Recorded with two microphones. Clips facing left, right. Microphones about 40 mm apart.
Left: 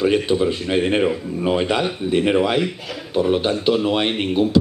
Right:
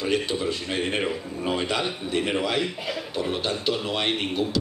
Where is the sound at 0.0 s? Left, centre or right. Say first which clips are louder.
Left 8 dB; left.